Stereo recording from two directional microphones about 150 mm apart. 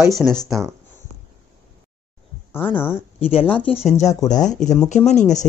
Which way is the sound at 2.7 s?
15° left (ahead or behind).